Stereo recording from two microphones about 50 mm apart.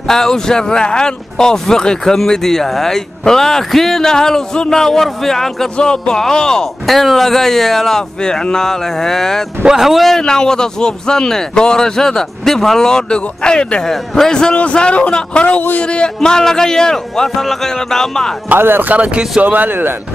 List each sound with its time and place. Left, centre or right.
0.0 s speech: centre
6.9 s speech: centre
8.2 s speech: centre
9.7 s speech: centre
10.0 s speech: centre
18.6 s speech: right
18.9 s speech: right
19.4 s speech: right